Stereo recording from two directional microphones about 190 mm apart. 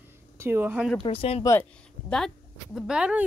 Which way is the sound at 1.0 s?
30° left (ahead or behind).